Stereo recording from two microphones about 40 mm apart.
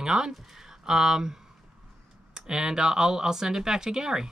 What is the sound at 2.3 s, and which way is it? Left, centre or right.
Speech, centre.